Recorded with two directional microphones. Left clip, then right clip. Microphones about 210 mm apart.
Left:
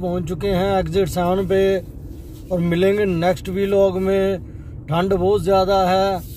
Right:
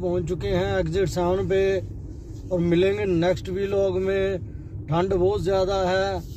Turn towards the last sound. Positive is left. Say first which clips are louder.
# left 6 dB
turn(degrees=15)  # may be behind; listen again after turning